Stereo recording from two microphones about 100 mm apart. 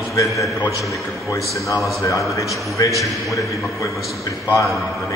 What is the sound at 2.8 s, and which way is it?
Speech, 45° left (ahead or behind).